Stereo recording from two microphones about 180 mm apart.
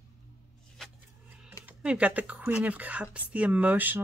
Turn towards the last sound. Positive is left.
turn(degrees=-10)  # may be behind; listen again after turning